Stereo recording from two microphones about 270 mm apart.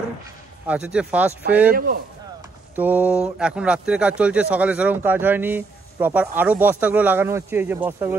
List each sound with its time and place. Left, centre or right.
0.7 s speech: centre
1.7 s speech: right
2.7 s speech: centre